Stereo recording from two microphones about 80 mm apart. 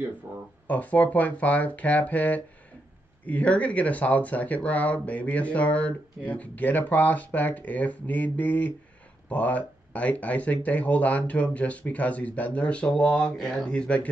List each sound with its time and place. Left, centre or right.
0.7 s speech: centre